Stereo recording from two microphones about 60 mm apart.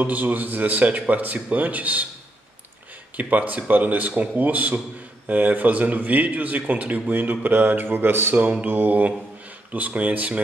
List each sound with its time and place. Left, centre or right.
0.0 s a man's voice: right
3.2 s a man's voice: right